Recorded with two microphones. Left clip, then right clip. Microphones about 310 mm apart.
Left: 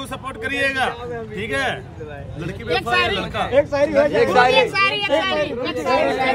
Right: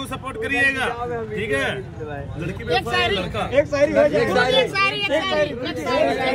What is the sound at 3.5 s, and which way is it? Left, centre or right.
Speech, left.